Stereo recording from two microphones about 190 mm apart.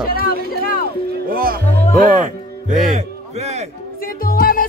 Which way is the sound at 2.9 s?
35° right (ahead or behind).